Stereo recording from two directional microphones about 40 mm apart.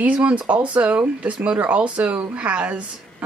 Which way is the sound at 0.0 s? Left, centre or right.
Right.